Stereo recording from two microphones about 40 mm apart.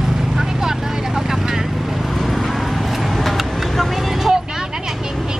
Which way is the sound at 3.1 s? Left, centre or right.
Centre.